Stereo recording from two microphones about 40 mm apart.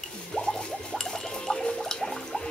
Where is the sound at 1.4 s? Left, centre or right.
Centre.